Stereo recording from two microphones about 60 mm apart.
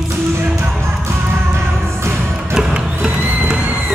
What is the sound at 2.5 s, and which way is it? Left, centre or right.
Music, centre.